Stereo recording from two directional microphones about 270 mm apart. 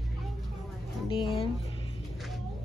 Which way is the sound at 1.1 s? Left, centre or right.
Centre.